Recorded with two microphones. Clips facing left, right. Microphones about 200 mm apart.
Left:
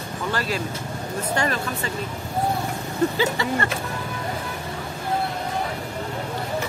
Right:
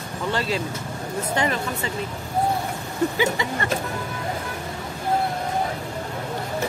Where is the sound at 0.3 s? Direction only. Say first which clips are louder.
Right 2 dB; 25° right (ahead or behind).